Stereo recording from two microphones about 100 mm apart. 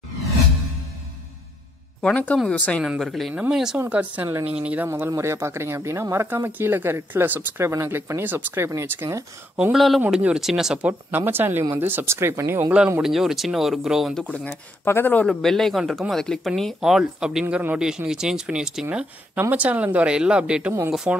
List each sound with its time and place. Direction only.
2.0 s speech: 10° left (ahead or behind)
2.8 s speech: 5° right (ahead or behind); by 9.2 s 25° right (ahead or behind)
9.6 s speech: 5° right (ahead or behind); by 12.7 s 25° right (ahead or behind)
13.0 s speech: 5° right (ahead or behind)
14.2 s speech: 15° left (ahead or behind)
15.2 s speech: 5° left (ahead or behind)